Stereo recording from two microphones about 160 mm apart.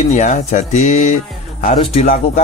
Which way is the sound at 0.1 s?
50° left (ahead or behind).